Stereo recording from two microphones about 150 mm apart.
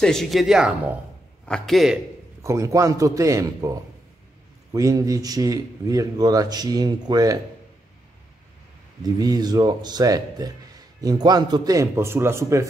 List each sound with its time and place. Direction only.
0.0 s speech: centre (ahead or behind)
2.4 s speech: 20° right (ahead or behind)
4.7 s speech: 20° right (ahead or behind)
9.0 s speech: 25° right (ahead or behind)